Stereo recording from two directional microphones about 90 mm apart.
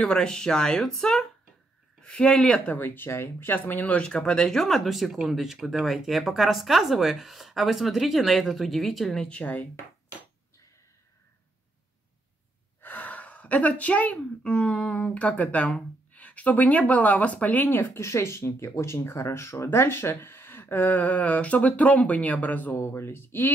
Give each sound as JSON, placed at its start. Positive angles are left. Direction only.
{"t": 0.0, "sound": "a woman's voice", "side_deg": 10}
{"t": 12.8, "sound": "a woman's voice", "side_deg": 20}